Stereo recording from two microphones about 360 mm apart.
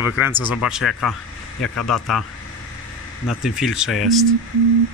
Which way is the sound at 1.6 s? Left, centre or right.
Left.